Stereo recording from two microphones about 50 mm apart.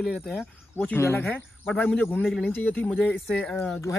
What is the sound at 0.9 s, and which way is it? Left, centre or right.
Speech, left.